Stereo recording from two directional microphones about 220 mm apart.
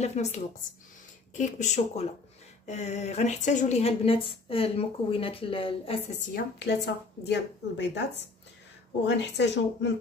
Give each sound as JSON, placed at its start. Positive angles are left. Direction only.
{"t": 0.0, "sound": "a woman's voice", "side_deg": 30}
{"t": 6.3, "sound": "a woman's voice", "side_deg": 50}